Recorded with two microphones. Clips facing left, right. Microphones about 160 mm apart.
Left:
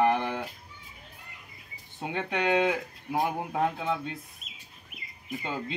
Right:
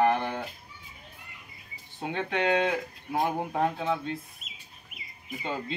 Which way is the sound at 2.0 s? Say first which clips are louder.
Right 1 dB; 10° left (ahead or behind).